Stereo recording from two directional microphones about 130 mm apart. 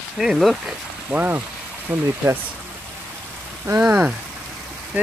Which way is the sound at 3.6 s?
15° right (ahead or behind).